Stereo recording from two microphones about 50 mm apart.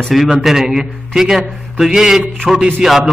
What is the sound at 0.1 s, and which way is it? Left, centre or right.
A man's voice, centre.